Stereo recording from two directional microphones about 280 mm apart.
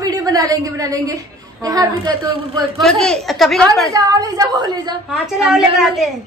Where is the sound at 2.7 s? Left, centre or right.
Centre.